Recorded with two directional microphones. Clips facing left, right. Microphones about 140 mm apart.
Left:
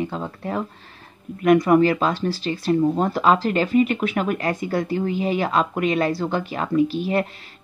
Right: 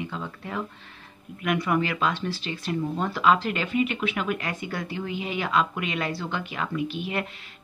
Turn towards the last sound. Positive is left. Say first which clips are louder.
# left 9 dB
turn(degrees=35)  # may be behind; listen again after turning